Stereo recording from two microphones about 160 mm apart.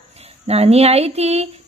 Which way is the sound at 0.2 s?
40° right (ahead or behind).